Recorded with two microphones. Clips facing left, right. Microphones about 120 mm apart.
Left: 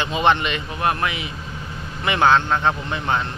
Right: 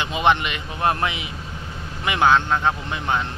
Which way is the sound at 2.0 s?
10° right (ahead or behind).